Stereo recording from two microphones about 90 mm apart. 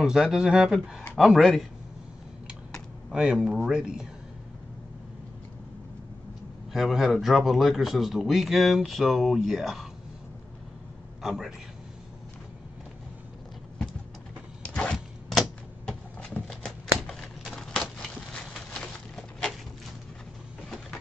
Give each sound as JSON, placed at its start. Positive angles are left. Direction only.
{"t": 0.0, "sound": "speech", "side_deg": -5}
{"t": 3.1, "sound": "speech", "side_deg": -10}
{"t": 6.7, "sound": "speech", "side_deg": 0}
{"t": 11.2, "sound": "speech", "side_deg": -5}
{"t": 14.6, "sound": "a sound", "side_deg": 10}